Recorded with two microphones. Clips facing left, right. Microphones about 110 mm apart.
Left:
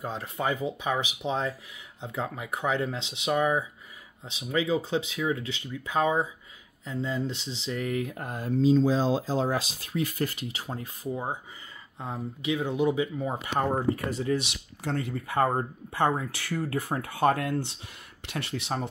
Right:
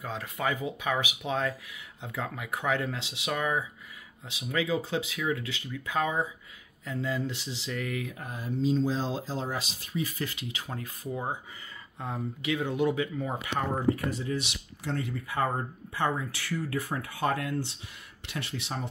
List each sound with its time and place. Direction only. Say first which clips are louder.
0.0 s speech: left 1 dB; 30° left (ahead or behind)
8.2 s speech: left 4 dB; 65° left (ahead or behind)
9.5 s speech: left 5 dB; 80° left
10.1 s speech: left 4 dB; 40° left (ahead or behind)
10.7 s speech: left 3 dB; 25° left (ahead or behind)
13.4 s speech: left 6 dB; 40° left (ahead or behind)
14.3 s speech: left 4 dB; 55° left (ahead or behind)